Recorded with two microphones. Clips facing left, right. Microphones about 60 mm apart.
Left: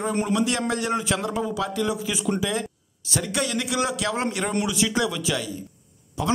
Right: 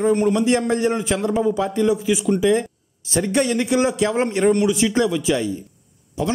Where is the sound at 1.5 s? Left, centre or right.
Right.